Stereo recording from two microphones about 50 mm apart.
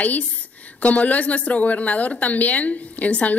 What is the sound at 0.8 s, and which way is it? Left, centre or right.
A woman's voice, left.